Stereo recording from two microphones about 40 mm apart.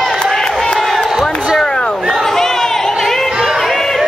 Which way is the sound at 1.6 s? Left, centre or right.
Centre.